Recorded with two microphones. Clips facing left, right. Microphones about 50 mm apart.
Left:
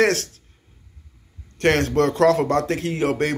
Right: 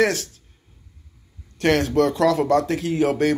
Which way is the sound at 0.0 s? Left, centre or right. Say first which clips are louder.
Left 1 dB; left.